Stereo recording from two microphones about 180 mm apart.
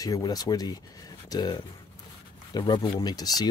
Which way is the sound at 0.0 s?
20° left (ahead or behind).